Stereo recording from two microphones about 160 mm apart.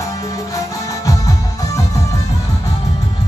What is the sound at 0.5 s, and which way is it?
Music, 20° left (ahead or behind).